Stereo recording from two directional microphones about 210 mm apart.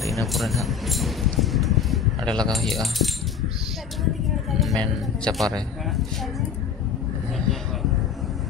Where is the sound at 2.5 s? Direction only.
Centre (ahead or behind).